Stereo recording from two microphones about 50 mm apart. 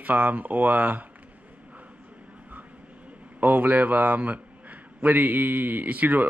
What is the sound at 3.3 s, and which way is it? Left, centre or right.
A man's voice, right.